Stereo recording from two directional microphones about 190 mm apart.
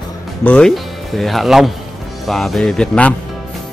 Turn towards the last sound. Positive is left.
turn(degrees=5)  # may be behind; listen again after turning